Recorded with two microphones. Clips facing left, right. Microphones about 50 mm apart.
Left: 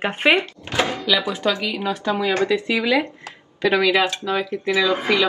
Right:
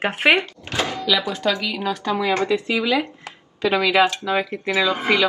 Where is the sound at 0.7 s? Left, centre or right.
Left.